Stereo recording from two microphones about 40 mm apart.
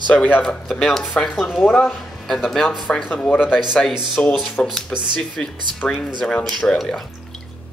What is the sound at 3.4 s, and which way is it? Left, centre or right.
Speech, centre.